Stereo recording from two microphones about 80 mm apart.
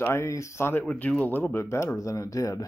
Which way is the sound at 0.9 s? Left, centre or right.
Centre.